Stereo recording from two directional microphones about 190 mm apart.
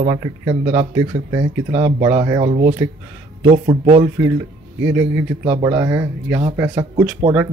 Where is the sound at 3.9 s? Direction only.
15° right (ahead or behind).